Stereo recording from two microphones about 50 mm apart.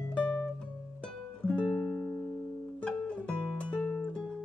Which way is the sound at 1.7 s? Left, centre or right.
Centre.